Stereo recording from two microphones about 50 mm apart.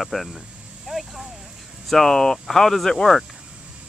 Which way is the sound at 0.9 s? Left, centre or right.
Centre.